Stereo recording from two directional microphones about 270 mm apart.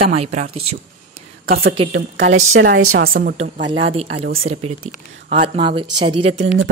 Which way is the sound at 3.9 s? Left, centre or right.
Right.